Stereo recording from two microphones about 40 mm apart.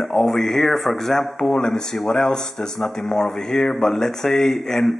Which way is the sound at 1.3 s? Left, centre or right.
Centre.